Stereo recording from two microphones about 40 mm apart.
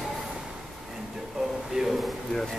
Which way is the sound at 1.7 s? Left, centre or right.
Centre.